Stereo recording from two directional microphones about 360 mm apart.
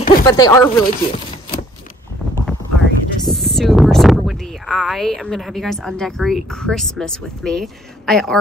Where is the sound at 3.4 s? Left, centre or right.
Centre.